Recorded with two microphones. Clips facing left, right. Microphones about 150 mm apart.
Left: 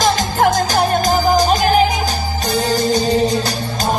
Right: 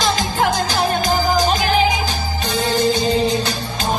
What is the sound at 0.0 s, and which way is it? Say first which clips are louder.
Music: left 4 dB; 45° left (ahead or behind).